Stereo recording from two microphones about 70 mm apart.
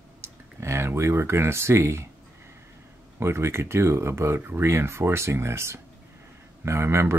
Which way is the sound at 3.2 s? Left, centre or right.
Right.